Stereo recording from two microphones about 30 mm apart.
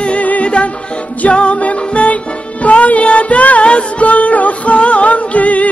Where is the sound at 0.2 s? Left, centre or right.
Left.